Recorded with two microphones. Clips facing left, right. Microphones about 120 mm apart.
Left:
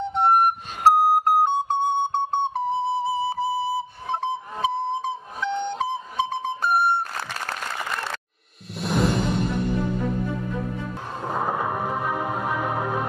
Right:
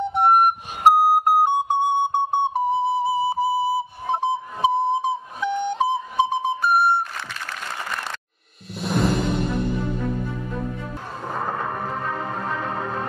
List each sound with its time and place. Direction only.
0.0 s music: 10° right (ahead or behind)
7.2 s a sound: 40° left (ahead or behind)
8.8 s music: centre (ahead or behind)
11.2 s music: 10° left (ahead or behind)